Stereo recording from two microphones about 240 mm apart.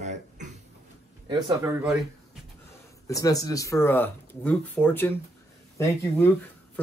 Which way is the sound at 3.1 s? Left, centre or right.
Centre.